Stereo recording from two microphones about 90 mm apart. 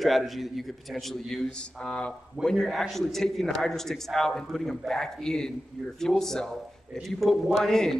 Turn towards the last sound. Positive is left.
turn(degrees=5)  # may be behind; listen again after turning